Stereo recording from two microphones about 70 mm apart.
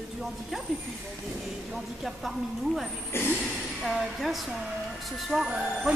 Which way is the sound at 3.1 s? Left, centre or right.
Left.